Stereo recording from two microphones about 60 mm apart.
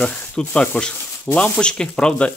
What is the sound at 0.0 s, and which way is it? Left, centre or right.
Speech, centre.